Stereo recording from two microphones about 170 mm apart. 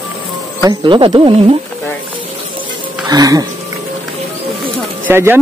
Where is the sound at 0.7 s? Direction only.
30° right (ahead or behind).